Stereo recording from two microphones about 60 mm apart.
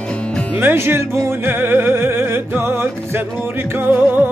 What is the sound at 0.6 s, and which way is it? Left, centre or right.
Music, right.